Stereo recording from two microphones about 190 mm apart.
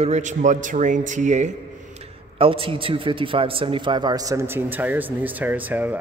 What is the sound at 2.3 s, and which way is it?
A man's voice, 30° right (ahead or behind).